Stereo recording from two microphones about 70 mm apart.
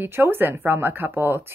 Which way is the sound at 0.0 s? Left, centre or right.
Right.